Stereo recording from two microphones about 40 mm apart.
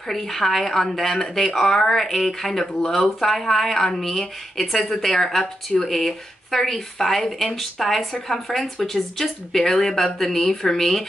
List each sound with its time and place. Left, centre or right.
0.1 s speech: centre